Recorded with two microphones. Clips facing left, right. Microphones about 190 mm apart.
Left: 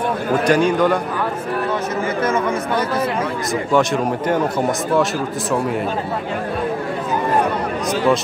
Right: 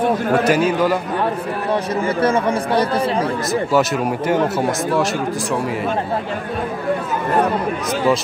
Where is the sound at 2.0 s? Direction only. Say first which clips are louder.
Right 2 dB; 30° right (ahead or behind).